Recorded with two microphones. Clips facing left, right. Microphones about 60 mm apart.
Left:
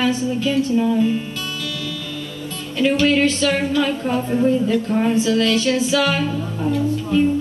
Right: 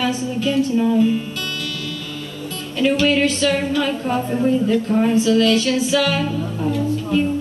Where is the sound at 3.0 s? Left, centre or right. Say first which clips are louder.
Even; centre.